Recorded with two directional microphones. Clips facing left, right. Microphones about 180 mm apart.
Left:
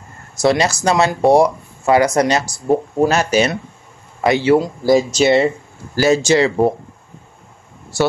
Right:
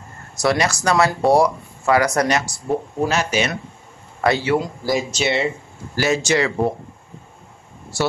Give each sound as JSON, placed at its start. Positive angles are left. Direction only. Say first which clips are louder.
{"t": 0.4, "sound": "speech", "louder": "left 4 dB", "side_deg": 25}
{"t": 3.1, "sound": "speech", "louder": "left 4 dB", "side_deg": 40}
{"t": 4.2, "sound": "speech", "louder": "left 5 dB", "side_deg": 25}
{"t": 5.1, "sound": "speech", "louder": "left 8 dB", "side_deg": 40}